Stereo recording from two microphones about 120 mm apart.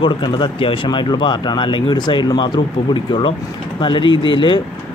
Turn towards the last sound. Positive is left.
turn(degrees=40)  # may be behind; listen again after turning